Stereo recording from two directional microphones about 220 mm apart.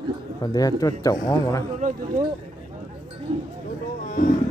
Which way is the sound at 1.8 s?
35° right (ahead or behind).